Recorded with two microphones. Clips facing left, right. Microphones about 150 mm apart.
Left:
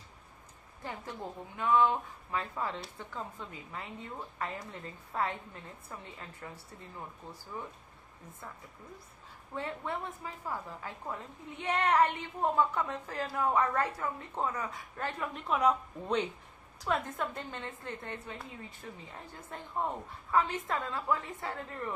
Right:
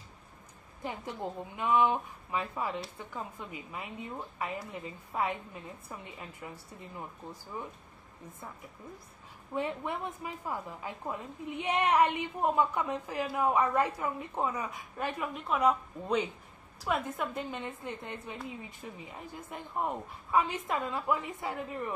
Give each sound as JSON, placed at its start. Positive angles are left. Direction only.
{"t": 0.8, "sound": "a woman's voice", "side_deg": -15}
{"t": 9.5, "sound": "a woman's voice", "side_deg": -15}